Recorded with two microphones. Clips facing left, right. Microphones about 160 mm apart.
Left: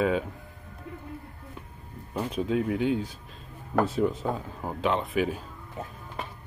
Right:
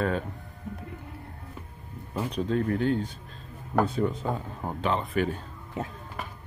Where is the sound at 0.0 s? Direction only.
5° left (ahead or behind).